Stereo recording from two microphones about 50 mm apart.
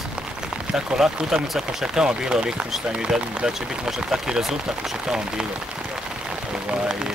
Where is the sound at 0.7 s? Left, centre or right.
Centre.